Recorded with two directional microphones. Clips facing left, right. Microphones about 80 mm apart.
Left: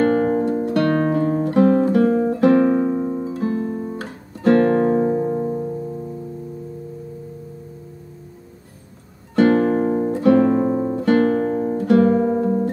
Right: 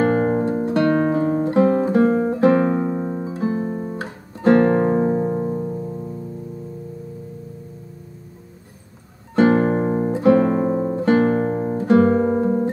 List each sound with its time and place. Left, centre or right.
0.0 s music: centre
9.3 s guitar: right